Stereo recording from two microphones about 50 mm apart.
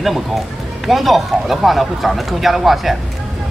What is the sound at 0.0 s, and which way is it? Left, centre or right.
Speech, centre.